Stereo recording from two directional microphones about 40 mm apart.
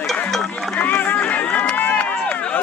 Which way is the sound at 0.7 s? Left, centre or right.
Left.